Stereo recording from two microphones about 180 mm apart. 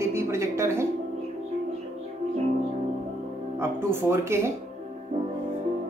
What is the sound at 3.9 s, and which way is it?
Speech, 15° right (ahead or behind).